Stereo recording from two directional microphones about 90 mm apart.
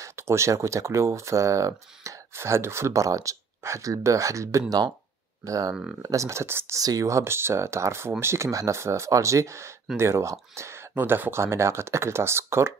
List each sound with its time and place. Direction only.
0.0 s speech: 30° right (ahead or behind)
6.8 s speech: 40° right (ahead or behind)